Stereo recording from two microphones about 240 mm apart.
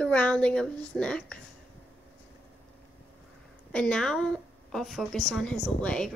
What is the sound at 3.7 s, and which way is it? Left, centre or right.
A woman's voice, centre.